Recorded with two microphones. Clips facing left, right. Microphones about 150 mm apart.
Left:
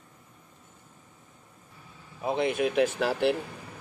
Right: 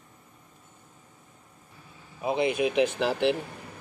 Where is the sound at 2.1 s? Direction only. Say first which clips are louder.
Right 1 dB; 5° right (ahead or behind).